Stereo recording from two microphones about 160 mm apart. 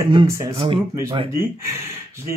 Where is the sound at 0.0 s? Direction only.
30° right (ahead or behind).